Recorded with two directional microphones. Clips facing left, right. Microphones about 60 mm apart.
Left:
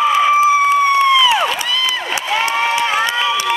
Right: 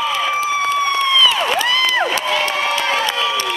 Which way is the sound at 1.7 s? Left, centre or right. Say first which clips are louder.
Right 3 dB; right.